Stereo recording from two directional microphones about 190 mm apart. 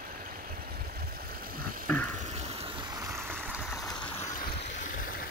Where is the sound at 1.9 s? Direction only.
5° left (ahead or behind).